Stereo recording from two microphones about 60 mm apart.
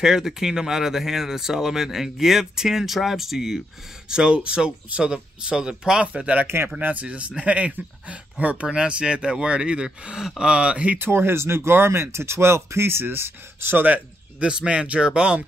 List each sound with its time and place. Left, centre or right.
0.0 s speech: centre
4.1 s speech: centre
6.4 s speech: right
6.8 s speech: right
11.0 s speech: right
13.8 s speech: right